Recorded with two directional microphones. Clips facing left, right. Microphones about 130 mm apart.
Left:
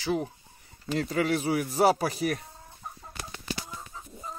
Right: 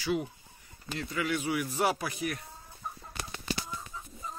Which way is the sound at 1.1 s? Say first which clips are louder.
Left 4 dB; 40° left (ahead or behind).